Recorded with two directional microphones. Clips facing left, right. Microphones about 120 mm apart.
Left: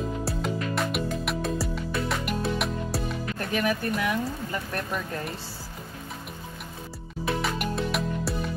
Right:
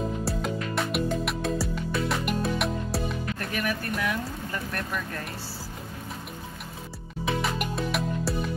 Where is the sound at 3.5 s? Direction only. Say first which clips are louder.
Left 5 dB; 25° left (ahead or behind).